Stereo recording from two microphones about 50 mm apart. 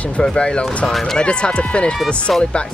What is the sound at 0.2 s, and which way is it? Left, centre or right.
Speech, centre.